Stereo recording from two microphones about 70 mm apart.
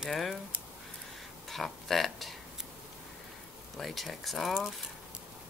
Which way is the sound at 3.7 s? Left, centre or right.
Centre.